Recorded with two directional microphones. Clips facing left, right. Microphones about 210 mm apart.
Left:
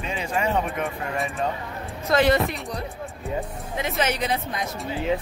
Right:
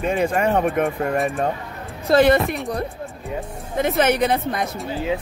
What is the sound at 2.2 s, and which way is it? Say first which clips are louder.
Speech: right 4 dB; 55° right (ahead or behind).